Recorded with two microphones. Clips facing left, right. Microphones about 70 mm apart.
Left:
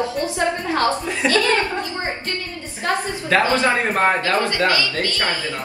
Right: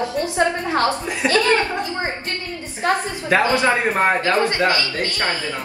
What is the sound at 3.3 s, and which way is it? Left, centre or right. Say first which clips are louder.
A man's voice: right 1 dB; right.